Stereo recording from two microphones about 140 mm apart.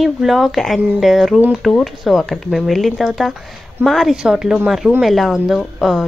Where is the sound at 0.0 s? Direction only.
Centre (ahead or behind).